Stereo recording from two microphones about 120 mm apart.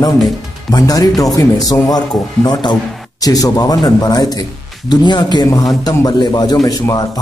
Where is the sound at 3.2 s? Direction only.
30° left (ahead or behind).